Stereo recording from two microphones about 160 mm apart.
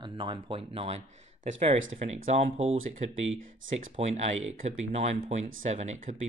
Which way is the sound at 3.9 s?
40° right (ahead or behind).